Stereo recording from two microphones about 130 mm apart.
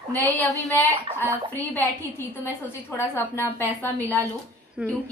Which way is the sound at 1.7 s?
15° left (ahead or behind).